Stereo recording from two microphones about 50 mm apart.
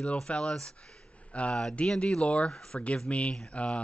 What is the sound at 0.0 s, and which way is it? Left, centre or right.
Speech, left.